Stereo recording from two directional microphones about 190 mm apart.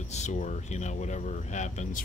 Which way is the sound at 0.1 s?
40° left (ahead or behind).